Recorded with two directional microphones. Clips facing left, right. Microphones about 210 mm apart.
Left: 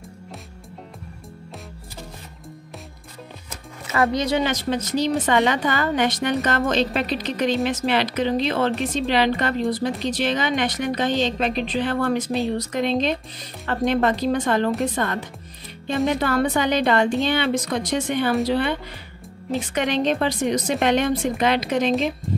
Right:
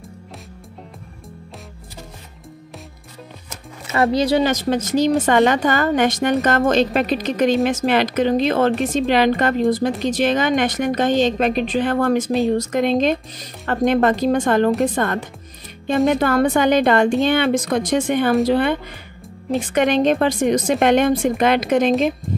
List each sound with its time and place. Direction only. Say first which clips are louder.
3.9 s a woman's voice: right 4 dB; 30° right (ahead or behind); by 21.9 s 50° right (ahead or behind)